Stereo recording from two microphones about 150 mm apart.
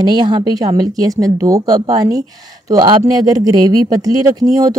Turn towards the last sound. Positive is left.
turn(degrees=-25)  # may be behind; listen again after turning